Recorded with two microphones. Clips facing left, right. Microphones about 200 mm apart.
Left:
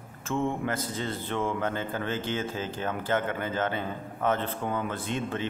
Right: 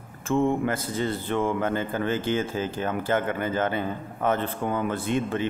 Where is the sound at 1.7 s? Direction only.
55° right (ahead or behind).